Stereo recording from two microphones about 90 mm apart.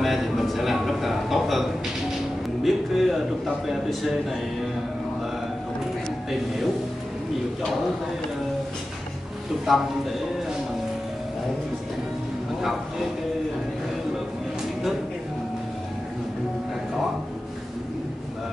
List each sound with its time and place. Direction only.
0.0 s a sound: centre (ahead or behind)
2.6 s speech: centre (ahead or behind)
9.7 s a man's voice: centre (ahead or behind)